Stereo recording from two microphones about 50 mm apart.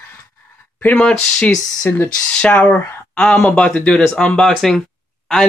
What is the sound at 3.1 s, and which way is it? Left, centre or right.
Speech, left.